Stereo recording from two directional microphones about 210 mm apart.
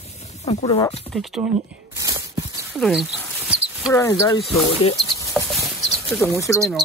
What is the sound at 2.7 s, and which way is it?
Rodents, centre (ahead or behind).